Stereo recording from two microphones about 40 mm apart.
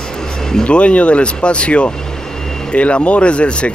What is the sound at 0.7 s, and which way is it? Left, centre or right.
Speech, left.